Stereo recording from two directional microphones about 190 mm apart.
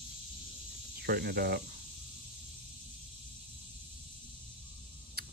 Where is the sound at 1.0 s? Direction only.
55° right (ahead or behind).